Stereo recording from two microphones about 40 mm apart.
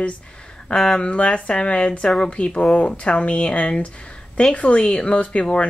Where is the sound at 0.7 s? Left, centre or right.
Centre.